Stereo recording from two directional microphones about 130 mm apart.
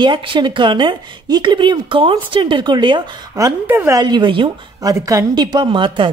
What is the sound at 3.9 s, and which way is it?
Speech, 35° right (ahead or behind).